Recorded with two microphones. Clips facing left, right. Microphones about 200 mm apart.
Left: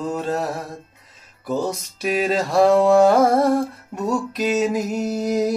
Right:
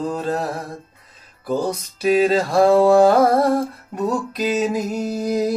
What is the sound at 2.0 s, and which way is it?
Mantra, 30° right (ahead or behind).